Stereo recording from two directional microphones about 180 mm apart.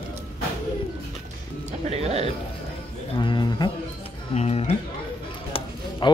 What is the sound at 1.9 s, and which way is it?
Speech, 35° right (ahead or behind).